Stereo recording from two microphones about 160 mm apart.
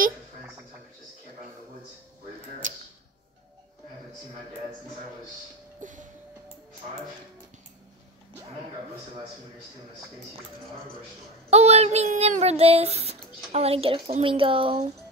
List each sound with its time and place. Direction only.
2.6 s tick-tock: 55° right (ahead or behind)
5.8 s a sound: 55° right (ahead or behind)
11.5 s child singing: 40° right (ahead or behind)